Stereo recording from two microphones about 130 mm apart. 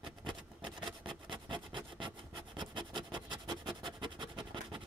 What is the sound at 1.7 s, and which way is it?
Rub, 40° right (ahead or behind).